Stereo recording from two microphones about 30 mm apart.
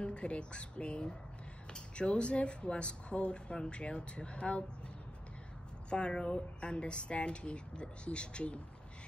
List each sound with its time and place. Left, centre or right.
0.0 s speech: left
5.9 s speech: left